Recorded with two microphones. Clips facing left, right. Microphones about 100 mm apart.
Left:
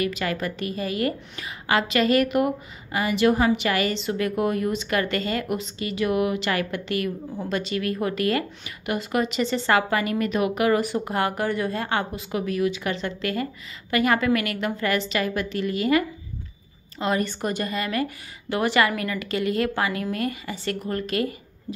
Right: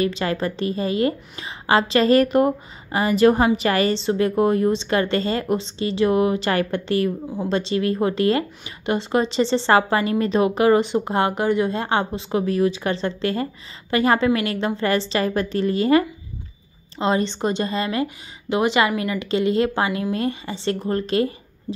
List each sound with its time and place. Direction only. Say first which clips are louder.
0.0 s a woman's voice: right 4 dB; 30° right (ahead or behind)